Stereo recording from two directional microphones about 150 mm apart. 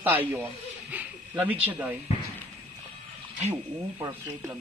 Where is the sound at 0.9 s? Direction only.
10° right (ahead or behind).